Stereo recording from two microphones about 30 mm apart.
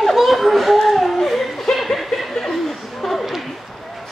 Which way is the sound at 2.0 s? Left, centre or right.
Centre.